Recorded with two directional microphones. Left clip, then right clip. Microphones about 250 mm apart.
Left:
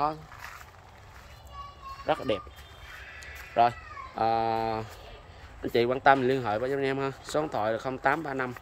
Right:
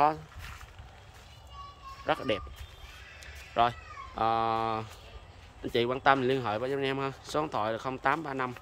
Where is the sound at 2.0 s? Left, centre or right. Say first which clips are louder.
Left 2 dB; centre.